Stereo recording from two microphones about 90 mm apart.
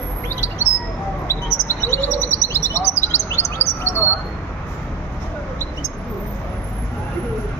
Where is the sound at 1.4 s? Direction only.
35° left (ahead or behind).